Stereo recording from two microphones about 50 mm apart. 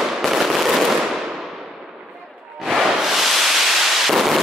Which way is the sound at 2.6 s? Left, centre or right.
Centre.